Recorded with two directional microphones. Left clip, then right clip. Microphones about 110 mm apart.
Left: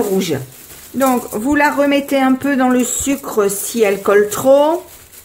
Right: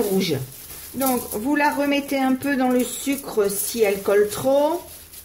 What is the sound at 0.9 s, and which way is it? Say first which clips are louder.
Speech: left 8 dB; 40° left (ahead or behind).